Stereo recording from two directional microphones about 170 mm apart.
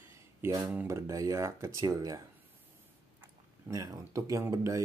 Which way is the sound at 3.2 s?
20° right (ahead or behind).